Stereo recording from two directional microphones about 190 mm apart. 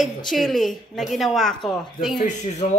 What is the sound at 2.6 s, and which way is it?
Speech, 35° left (ahead or behind).